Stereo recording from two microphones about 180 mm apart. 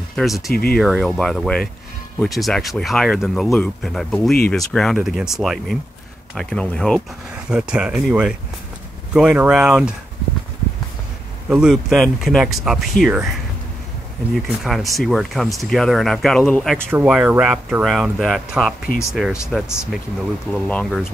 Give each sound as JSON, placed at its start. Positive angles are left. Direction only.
{"t": 0.1, "sound": "speech", "side_deg": 0}
{"t": 0.5, "sound": "speech", "side_deg": 60}
{"t": 0.7, "sound": "speech", "side_deg": 0}
{"t": 11.4, "sound": "speech", "side_deg": -5}
{"t": 14.3, "sound": "speech", "side_deg": 0}
{"t": 16.7, "sound": "speech", "side_deg": -10}